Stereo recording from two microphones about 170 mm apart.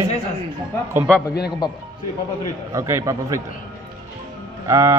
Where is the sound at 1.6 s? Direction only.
25° left (ahead or behind).